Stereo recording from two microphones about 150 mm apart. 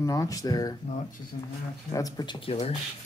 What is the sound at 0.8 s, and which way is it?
Speech, 50° left (ahead or behind).